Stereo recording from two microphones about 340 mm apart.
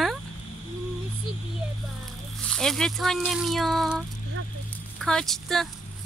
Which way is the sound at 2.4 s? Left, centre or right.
Centre.